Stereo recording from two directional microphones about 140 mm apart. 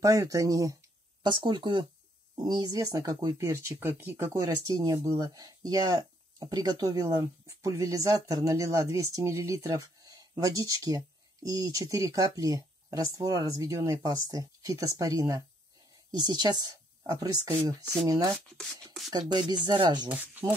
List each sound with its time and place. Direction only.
0.0 s speech: 25° right (ahead or behind)
1.2 s a woman's voice: 35° right (ahead or behind)
20.1 s speech: 15° right (ahead or behind)